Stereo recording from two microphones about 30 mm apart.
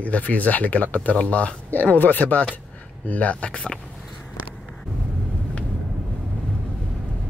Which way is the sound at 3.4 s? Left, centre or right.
Left.